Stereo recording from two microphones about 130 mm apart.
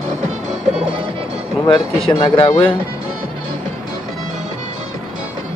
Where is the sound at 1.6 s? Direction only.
45° left (ahead or behind).